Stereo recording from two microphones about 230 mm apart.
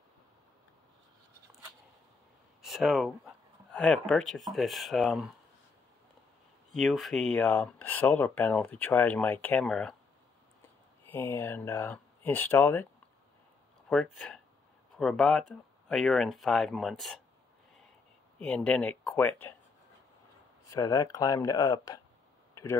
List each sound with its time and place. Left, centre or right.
2.6 s speech: centre
6.7 s speech: centre
11.1 s speech: centre
13.8 s speech: centre
18.4 s speech: centre
20.6 s speech: centre